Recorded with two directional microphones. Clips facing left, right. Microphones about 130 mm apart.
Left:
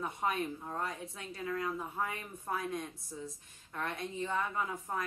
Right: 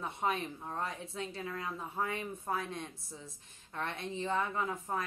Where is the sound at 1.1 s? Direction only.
25° right (ahead or behind).